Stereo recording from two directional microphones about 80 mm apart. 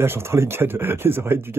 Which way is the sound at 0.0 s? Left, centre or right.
Right.